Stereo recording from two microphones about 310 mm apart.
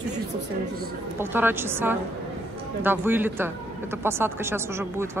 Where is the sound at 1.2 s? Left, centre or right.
Centre.